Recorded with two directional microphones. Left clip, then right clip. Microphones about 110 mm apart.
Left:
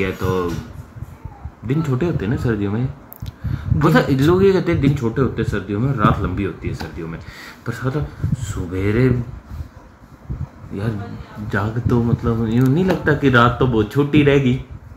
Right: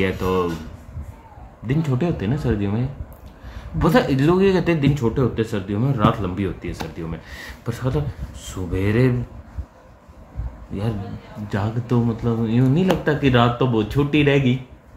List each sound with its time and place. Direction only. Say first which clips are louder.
0.0 s speech: even; 65° right (ahead or behind)
1.7 s speech: left 2 dB; 35° right (ahead or behind)
3.8 s speech: left 2 dB; 45° right (ahead or behind)
11.4 s speech: left 4 dB; 30° right (ahead or behind)